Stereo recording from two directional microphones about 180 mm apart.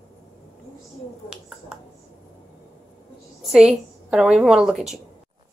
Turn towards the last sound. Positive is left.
turn(degrees=0)  # may be behind; listen again after turning